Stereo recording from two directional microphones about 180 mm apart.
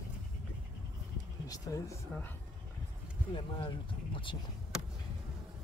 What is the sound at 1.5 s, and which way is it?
Speech, 15° left (ahead or behind).